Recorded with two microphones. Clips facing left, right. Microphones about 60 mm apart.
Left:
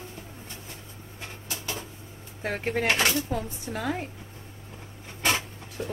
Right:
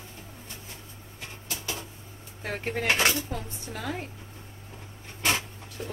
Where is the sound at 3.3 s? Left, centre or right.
Centre.